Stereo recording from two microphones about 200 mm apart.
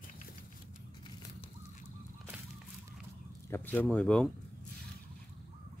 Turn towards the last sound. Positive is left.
turn(degrees=5)  # may be behind; listen again after turning